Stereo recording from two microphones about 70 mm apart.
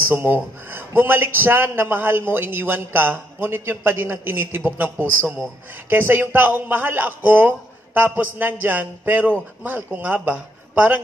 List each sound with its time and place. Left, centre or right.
0.1 s a man's voice: right